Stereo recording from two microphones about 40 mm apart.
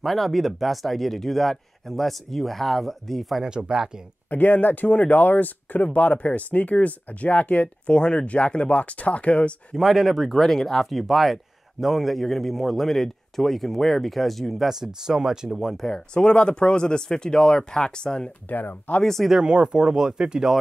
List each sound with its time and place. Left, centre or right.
0.0 s a man's voice: centre
3.4 s speech: right
4.3 s speech: left
4.9 s speech: left
5.2 s speech: left
9.8 s a man's voice: centre
15.9 s speech: left
18.5 s speech: left
19.4 s speech: right